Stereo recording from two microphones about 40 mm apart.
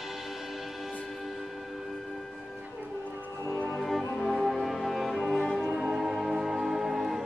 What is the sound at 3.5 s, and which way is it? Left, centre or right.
Music, left.